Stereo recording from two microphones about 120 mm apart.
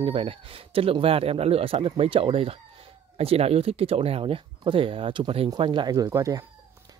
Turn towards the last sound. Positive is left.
turn(degrees=-30)  # may be behind; listen again after turning